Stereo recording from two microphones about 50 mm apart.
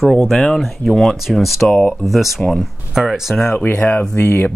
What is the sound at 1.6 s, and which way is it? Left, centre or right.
Speech, centre.